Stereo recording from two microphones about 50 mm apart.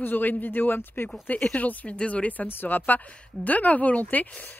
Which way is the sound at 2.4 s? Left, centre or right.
Left.